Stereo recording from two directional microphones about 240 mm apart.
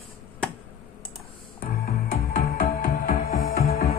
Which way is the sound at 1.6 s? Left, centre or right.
Left.